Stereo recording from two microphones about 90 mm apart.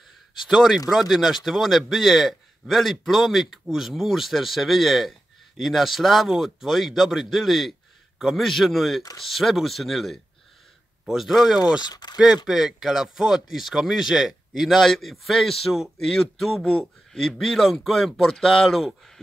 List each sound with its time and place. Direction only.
0.5 s speech: centre (ahead or behind)
11.8 s speech: 50° left (ahead or behind)
12.4 s speech: 5° right (ahead or behind)